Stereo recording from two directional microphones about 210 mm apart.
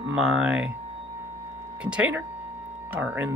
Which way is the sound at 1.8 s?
5° right (ahead or behind).